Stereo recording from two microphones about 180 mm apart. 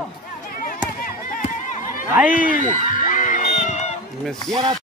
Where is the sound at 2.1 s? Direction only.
10° right (ahead or behind).